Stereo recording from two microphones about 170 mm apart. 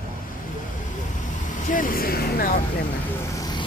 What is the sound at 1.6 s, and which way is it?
Vehicle, 55° left (ahead or behind).